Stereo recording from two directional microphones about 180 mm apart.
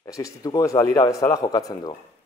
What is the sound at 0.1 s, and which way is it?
A man's voice, 20° left (ahead or behind).